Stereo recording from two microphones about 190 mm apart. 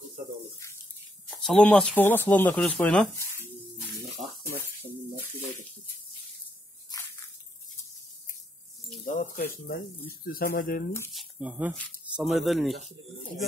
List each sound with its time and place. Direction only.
1.3 s speech: centre (ahead or behind)
9.0 s speech: 45° left (ahead or behind)
11.1 s speech: 5° right (ahead or behind)